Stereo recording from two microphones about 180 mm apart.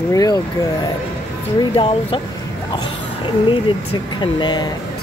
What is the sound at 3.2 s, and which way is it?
Speech, 25° left (ahead or behind).